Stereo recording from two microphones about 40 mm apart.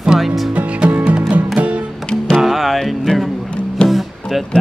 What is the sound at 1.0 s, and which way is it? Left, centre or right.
Music, right.